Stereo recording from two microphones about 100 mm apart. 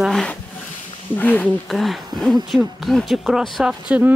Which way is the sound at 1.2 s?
20° left (ahead or behind).